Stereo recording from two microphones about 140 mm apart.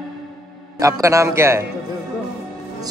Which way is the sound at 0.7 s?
25° right (ahead or behind).